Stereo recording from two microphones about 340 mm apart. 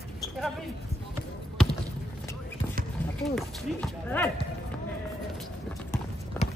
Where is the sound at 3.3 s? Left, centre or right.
Centre.